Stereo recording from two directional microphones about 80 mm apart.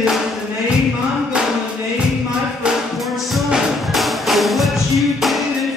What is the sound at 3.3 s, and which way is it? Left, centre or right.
Music, centre.